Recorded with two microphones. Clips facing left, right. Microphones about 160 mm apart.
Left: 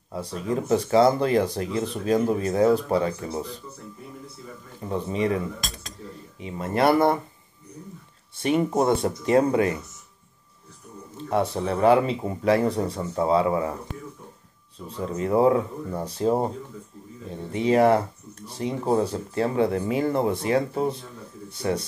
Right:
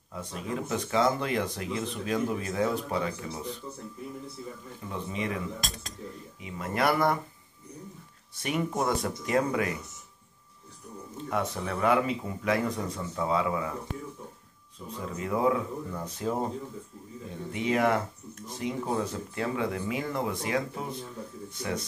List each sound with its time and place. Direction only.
0.1 s speech: 35° left (ahead or behind)
4.8 s speech: 35° left (ahead or behind)
6.4 s speech: 30° left (ahead or behind)
8.4 s speech: 30° left (ahead or behind)
11.2 s speech: 30° left (ahead or behind)
15.0 s speech: 35° left (ahead or behind)